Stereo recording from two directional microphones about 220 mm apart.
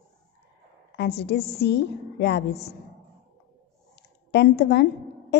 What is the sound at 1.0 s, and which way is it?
A woman's voice, 50° left (ahead or behind).